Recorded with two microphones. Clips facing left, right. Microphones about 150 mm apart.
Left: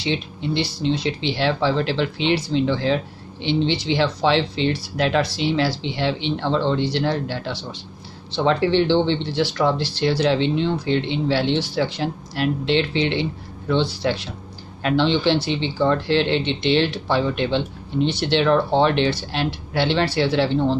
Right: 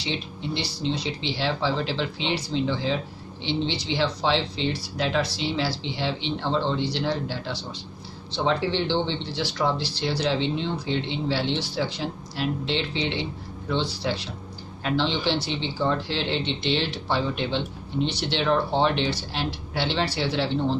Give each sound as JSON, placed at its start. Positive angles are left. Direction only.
{"t": 0.0, "sound": "speech", "side_deg": 65}